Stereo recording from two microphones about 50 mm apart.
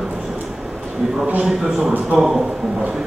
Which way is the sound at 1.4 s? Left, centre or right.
Centre.